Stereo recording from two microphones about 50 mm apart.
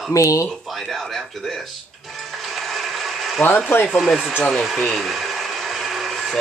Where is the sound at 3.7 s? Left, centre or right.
Left.